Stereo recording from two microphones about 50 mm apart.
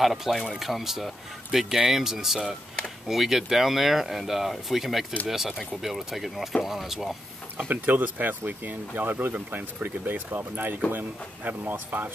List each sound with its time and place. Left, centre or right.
0.0 s speech: centre
7.5 s speech: right